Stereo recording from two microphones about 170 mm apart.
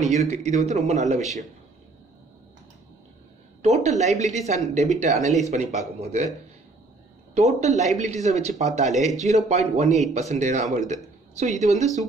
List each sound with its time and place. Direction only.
0.1 s speech: 40° right (ahead or behind)
3.6 s speech: 40° right (ahead or behind)
7.3 s speech: 40° right (ahead or behind)